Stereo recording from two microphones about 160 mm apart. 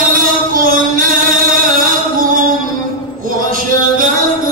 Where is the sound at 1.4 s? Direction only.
60° right (ahead or behind).